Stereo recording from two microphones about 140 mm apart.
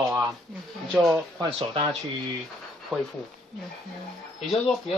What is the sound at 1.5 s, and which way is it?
Speech, 40° right (ahead or behind).